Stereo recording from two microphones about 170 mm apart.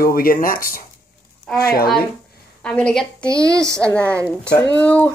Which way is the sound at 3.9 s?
10° left (ahead or behind).